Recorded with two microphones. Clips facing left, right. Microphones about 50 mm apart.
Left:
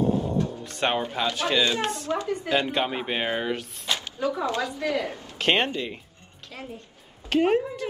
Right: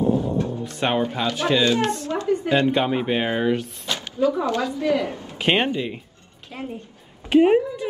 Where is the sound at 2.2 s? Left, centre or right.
Right.